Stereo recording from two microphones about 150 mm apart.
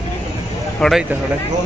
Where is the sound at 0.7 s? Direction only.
Centre (ahead or behind).